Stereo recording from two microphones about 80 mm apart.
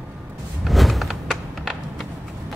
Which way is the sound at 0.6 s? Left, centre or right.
Centre.